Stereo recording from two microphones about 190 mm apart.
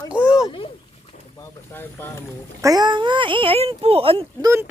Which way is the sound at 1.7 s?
10° left (ahead or behind).